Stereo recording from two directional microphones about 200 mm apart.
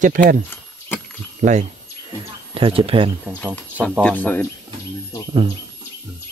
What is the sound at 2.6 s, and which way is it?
Speech, 25° right (ahead or behind).